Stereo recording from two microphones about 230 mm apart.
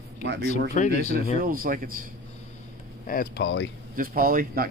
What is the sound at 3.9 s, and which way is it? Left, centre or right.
Speech, right.